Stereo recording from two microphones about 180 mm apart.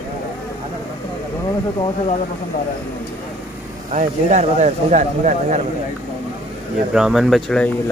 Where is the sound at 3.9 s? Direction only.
40° right (ahead or behind).